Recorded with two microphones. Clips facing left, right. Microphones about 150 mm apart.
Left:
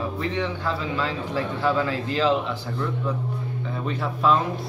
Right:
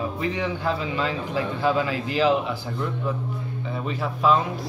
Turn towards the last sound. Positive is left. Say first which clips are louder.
# even
turn(degrees=0)  # may be behind; listen again after turning